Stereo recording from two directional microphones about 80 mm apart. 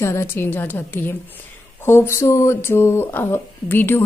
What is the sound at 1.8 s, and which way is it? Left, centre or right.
A woman's voice, left.